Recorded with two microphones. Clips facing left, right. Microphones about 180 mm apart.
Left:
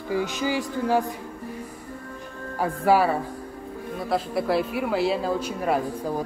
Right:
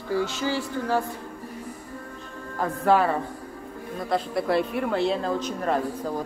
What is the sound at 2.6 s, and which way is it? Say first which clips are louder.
Speech: left 1 dB; 10° left (ahead or behind).